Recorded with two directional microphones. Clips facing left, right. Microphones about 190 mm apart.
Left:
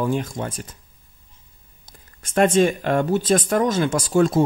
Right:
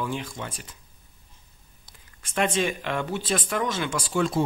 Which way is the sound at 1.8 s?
45° left (ahead or behind).